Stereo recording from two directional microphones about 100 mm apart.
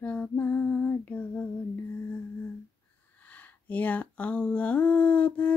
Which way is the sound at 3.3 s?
15° left (ahead or behind).